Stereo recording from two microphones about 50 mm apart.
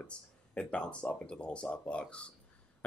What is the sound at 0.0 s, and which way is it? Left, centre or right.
Speech, left.